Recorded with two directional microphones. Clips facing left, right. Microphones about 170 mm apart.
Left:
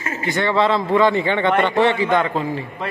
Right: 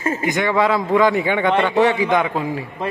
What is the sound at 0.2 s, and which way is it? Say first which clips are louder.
Speech: left 2 dB; 15° right (ahead or behind).